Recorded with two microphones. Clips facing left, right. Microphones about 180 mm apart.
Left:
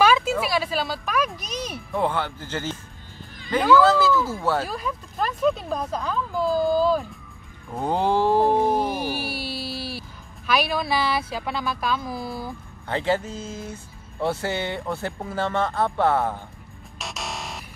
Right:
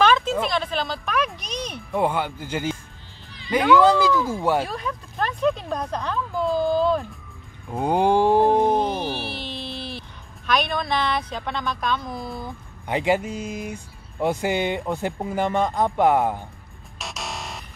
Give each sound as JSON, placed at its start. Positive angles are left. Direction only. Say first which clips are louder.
{"t": 0.0, "sound": "a sound", "louder": "even", "side_deg": 5}
{"t": 1.9, "sound": "speech", "louder": "right 2 dB", "side_deg": -15}
{"t": 4.6, "sound": "speech", "louder": "even", "side_deg": 0}
{"t": 7.7, "sound": "speech", "louder": "right 3 dB", "side_deg": -15}
{"t": 8.6, "sound": "speech", "louder": "right 1 dB", "side_deg": 10}
{"t": 12.8, "sound": "speech", "louder": "right 2 dB", "side_deg": -15}
{"t": 17.0, "sound": "music", "louder": "even", "side_deg": 0}